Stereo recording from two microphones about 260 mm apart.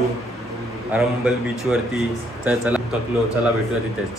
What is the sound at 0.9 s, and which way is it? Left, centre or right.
Speech, centre.